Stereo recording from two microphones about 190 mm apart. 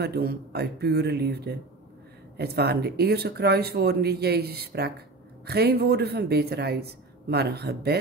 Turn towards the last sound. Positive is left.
turn(degrees=-55)  # may be behind; listen again after turning